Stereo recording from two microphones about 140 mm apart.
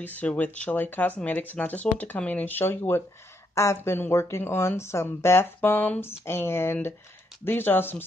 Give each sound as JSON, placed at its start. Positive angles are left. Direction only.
{"t": 0.0, "sound": "speech", "side_deg": 10}